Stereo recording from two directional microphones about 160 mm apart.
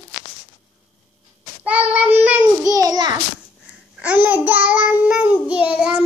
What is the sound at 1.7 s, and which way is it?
Child singing, 10° right (ahead or behind).